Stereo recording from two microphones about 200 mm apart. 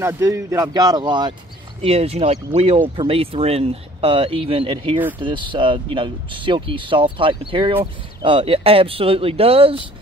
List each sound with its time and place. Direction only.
0.0 s speech: 15° right (ahead or behind)